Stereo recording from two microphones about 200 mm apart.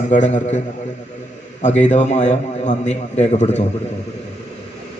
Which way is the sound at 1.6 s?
35° left (ahead or behind).